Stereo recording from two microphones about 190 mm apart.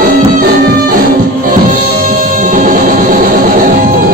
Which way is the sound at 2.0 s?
45° right (ahead or behind).